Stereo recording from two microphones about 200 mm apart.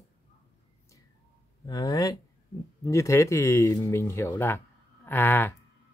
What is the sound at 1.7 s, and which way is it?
Speech, 20° left (ahead or behind).